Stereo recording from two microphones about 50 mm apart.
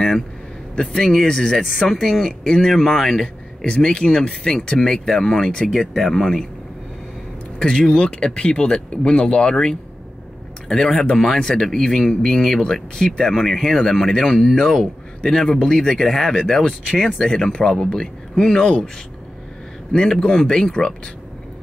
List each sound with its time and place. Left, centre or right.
0.7 s speech: centre
1.6 s speech: centre
2.0 s speech: centre
3.6 s speech: centre
7.5 s speech: centre
19.9 s speech: centre